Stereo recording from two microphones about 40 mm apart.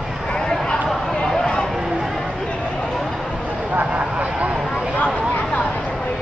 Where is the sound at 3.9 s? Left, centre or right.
Right.